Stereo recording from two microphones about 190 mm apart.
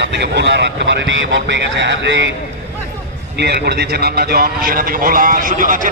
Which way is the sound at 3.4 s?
60° right (ahead or behind).